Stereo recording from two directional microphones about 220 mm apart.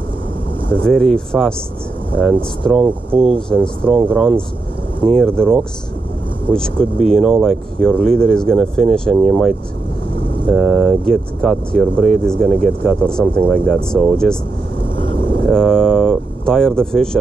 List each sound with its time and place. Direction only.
0.8 s speech: 5° left (ahead or behind)
7.0 s speech: centre (ahead or behind)
15.4 s speech: 5° left (ahead or behind)